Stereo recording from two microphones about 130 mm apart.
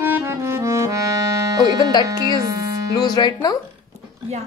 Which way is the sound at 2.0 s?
30° right (ahead or behind).